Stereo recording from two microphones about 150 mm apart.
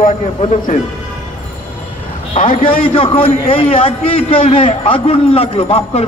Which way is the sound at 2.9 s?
35° left (ahead or behind).